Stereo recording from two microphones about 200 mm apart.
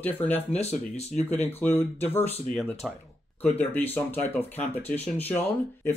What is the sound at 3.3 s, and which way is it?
Speech, 10° left (ahead or behind).